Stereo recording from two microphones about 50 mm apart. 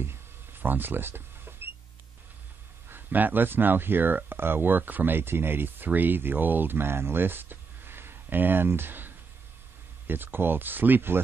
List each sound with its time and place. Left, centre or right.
0.0 s a sound: right
2.9 s speech: right
5.9 s speech: right